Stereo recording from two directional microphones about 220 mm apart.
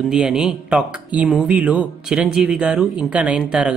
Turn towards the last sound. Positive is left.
turn(degrees=-5)  # may be behind; listen again after turning